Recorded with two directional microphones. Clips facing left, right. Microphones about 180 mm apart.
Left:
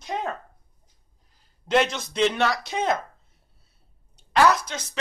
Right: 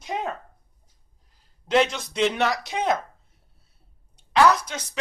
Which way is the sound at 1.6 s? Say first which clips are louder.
Right 1 dB; centre (ahead or behind).